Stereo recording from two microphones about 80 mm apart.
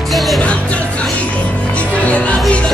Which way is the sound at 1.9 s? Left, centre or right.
Centre.